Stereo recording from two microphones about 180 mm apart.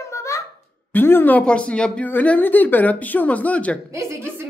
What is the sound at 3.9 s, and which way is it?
Speech, 15° right (ahead or behind).